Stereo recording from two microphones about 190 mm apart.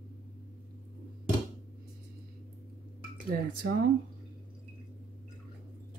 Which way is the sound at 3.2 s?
50° right (ahead or behind).